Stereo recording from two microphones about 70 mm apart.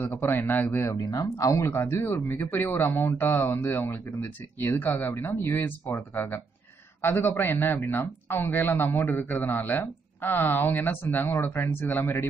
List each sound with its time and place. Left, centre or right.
0.0 s speech: left
0.9 s speech: left
1.7 s a man's voice: left